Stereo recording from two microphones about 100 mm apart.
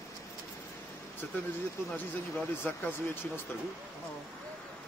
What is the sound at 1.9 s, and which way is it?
Speech, 15° left (ahead or behind).